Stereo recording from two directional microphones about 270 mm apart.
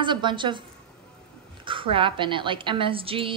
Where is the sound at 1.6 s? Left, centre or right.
Centre.